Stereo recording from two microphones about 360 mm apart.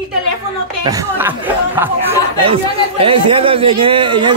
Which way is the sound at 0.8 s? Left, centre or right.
Centre.